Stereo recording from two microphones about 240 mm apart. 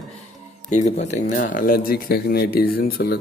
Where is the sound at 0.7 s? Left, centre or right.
Left.